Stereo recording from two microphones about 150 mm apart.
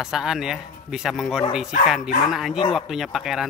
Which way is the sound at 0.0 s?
5° right (ahead or behind).